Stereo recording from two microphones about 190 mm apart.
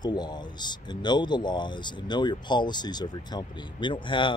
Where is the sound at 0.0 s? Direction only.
20° left (ahead or behind).